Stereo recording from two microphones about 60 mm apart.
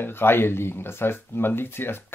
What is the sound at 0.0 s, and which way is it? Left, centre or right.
Speech, left.